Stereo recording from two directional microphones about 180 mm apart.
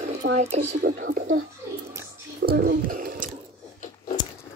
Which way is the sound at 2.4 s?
55° right (ahead or behind).